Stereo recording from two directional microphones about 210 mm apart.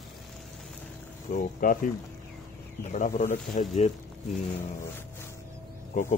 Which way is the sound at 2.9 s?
35° left (ahead or behind).